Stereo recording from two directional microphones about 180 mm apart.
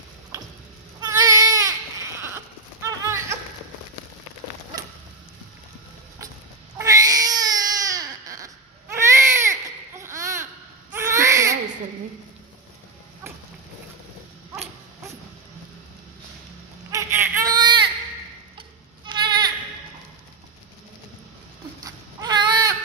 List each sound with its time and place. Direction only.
1.0 s baby cry: 20° right (ahead or behind)
2.2 s a sound: 15° right (ahead or behind)
6.8 s baby cry: 20° right (ahead or behind)
16.9 s baby cry: 10° right (ahead or behind)
19.0 s goat: 25° right (ahead or behind)
21.8 s baby cry: 25° right (ahead or behind)